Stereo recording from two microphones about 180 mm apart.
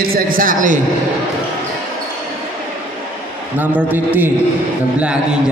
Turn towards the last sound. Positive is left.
turn(degrees=-10)  # may be behind; listen again after turning